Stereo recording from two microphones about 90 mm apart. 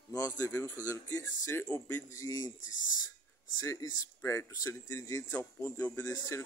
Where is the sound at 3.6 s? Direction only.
40° left (ahead or behind).